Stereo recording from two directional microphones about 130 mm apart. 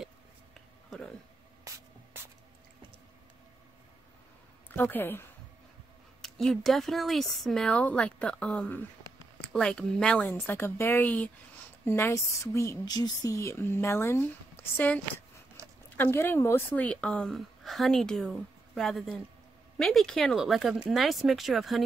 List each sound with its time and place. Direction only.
0.6 s a sound: 5° left (ahead or behind)
1.7 s spray: 25° right (ahead or behind)
4.6 s a woman's voice: 15° left (ahead or behind)
6.2 s a woman's voice: 5° left (ahead or behind)
10.2 s a woman's voice: 20° left (ahead or behind); by 21.8 s centre (ahead or behind)